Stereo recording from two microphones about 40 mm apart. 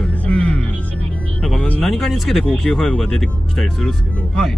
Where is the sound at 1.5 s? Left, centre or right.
Left.